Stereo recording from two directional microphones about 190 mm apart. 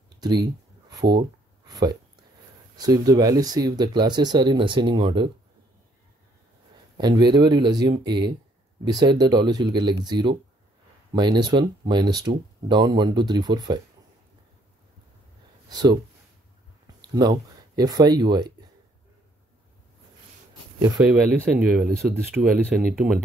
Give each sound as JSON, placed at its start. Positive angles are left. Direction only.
{"t": 0.2, "sound": "a sound", "side_deg": -20}
{"t": 2.7, "sound": "speech", "side_deg": -20}
{"t": 7.0, "sound": "speech", "side_deg": -20}
{"t": 15.7, "sound": "speech", "side_deg": -20}
{"t": 17.0, "sound": "speech", "side_deg": -20}
{"t": 21.1, "sound": "speech", "side_deg": -5}
{"t": 22.8, "sound": "speech", "side_deg": 0}